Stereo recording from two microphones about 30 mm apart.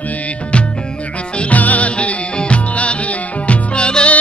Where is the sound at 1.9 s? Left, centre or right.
Left.